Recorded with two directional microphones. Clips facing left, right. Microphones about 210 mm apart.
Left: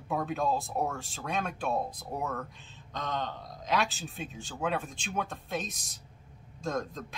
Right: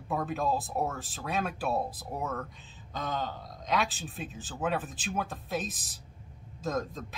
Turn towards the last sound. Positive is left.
turn(degrees=-5)  # may be behind; listen again after turning